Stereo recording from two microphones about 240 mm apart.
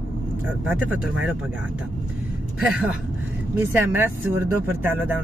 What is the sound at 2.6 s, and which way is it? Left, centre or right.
Speech, centre.